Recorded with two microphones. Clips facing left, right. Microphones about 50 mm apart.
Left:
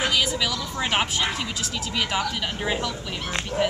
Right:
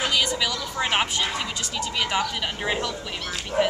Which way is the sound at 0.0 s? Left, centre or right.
Centre.